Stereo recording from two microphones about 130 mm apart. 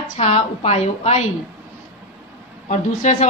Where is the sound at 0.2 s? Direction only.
55° left (ahead or behind).